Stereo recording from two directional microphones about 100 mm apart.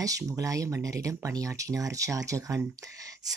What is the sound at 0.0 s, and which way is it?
Speech, 35° right (ahead or behind).